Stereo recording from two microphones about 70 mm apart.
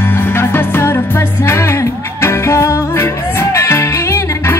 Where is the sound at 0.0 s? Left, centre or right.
Left.